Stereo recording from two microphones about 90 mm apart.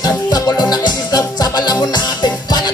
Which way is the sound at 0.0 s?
50° left (ahead or behind).